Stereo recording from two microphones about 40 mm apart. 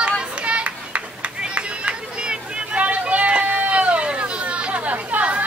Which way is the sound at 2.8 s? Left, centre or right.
Right.